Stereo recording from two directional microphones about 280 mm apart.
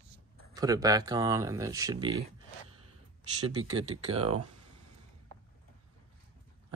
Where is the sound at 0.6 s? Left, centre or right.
Centre.